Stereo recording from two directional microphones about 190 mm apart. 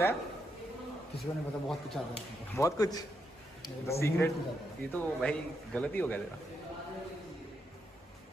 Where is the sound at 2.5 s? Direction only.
15° left (ahead or behind).